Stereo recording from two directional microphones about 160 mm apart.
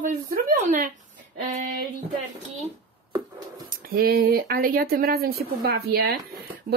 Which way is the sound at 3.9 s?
70° right (ahead or behind).